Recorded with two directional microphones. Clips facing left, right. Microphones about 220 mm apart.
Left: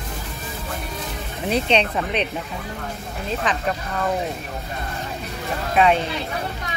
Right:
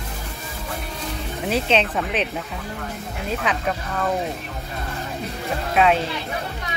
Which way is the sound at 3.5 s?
10° right (ahead or behind).